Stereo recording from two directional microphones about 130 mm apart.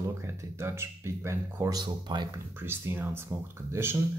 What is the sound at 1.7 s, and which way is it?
Speech, 35° right (ahead or behind).